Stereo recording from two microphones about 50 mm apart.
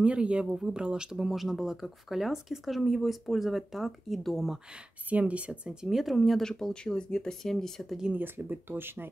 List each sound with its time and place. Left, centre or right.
0.0 s speech: right; by 4.5 s centre
5.2 s speech: right
5.9 s speech: centre
6.4 s speech: centre
8.1 s speech: right